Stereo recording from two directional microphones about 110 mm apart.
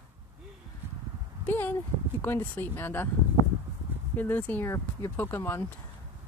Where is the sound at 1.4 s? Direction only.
20° left (ahead or behind).